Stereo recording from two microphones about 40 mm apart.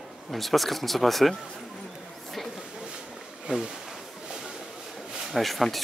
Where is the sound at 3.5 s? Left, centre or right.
Right.